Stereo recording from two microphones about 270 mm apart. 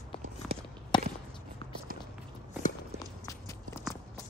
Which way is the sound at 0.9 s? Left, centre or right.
Centre.